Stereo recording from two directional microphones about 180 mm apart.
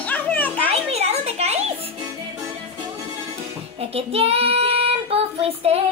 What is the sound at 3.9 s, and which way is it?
Child singing, 35° right (ahead or behind).